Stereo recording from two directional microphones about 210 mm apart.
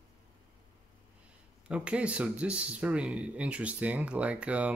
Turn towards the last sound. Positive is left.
turn(degrees=-5)  # may be behind; listen again after turning